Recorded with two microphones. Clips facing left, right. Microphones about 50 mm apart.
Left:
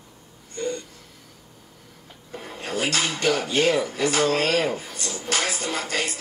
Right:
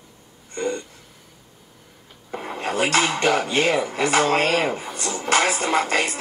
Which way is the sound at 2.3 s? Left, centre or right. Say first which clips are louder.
Right 5 dB; right.